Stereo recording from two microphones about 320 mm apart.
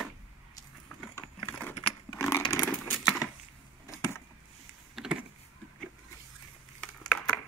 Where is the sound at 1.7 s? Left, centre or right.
Centre.